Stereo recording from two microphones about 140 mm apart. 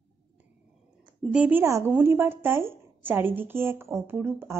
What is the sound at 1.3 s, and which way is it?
A woman's voice, 10° right (ahead or behind).